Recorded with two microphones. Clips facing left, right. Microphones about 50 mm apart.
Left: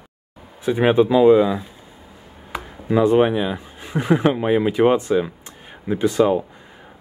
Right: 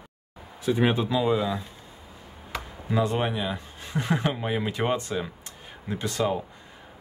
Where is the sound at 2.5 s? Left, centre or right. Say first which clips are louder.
Left 7 dB; centre.